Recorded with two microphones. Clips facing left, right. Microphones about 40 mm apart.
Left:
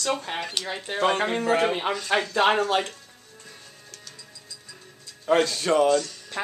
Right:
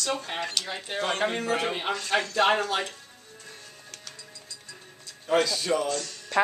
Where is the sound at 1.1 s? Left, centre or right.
Left.